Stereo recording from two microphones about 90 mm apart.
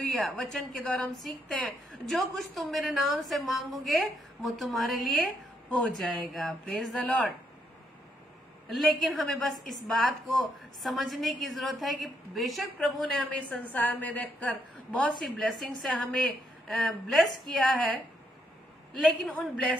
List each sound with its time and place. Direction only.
0.0 s a woman's voice: centre (ahead or behind)
8.6 s a woman's voice: centre (ahead or behind)
13.5 s a woman's voice: 15° left (ahead or behind)
15.0 s a woman's voice: centre (ahead or behind)
19.2 s a woman's voice: 5° left (ahead or behind)